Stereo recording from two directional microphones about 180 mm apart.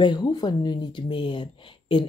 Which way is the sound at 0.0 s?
25° left (ahead or behind).